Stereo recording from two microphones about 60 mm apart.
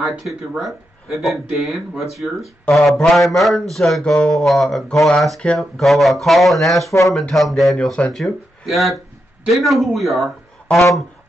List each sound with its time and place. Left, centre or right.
0.2 s speech: centre
4.0 s speech: centre
4.3 s speech: centre
6.9 s speech: left
7.2 s speech: centre
7.7 s speech: centre
8.1 s speech: centre